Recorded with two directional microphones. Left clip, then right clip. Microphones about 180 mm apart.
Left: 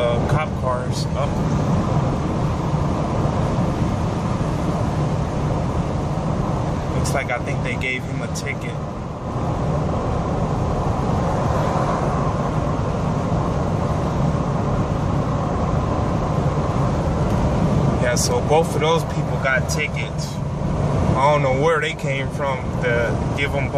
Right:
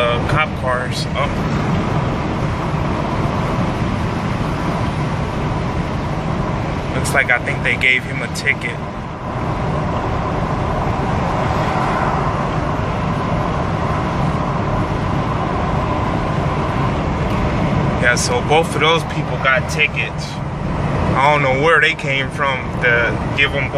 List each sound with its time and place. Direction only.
7.2 s speech: 15° left (ahead or behind)
18.0 s speech: 10° left (ahead or behind)
21.2 s speech: 10° left (ahead or behind)